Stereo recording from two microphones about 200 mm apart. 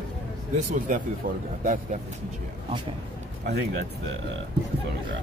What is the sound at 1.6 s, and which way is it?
Speech, 40° right (ahead or behind).